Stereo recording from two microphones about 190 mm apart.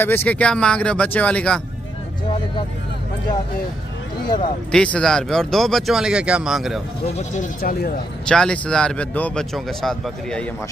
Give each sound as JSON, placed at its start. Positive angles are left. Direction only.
{"t": 0.0, "sound": "speech", "side_deg": 10}
{"t": 4.6, "sound": "a man's voice", "side_deg": 5}
{"t": 7.2, "sound": "speech", "side_deg": 45}
{"t": 8.3, "sound": "a man's voice", "side_deg": 5}